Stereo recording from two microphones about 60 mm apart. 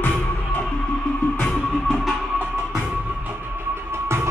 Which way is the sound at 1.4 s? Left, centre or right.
Centre.